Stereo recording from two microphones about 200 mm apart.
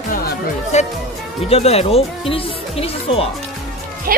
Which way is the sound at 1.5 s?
30° left (ahead or behind).